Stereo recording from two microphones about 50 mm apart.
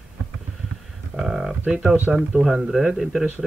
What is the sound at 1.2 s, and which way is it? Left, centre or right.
Speech, centre.